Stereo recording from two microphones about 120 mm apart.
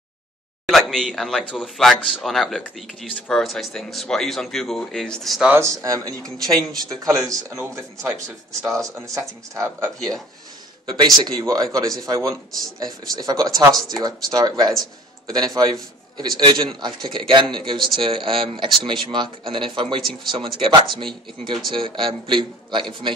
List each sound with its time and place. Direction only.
0.7 s speech: centre (ahead or behind)
5.5 s a man's voice: 25° right (ahead or behind)
9.6 s speech: 25° right (ahead or behind)
11.0 s a man's voice: 40° right (ahead or behind)